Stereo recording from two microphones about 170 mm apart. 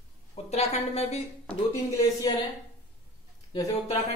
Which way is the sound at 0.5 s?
40° left (ahead or behind).